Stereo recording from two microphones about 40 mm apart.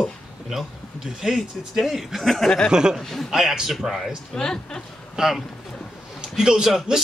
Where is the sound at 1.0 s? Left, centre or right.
Centre.